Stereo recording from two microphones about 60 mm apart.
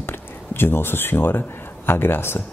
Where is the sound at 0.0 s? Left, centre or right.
Left.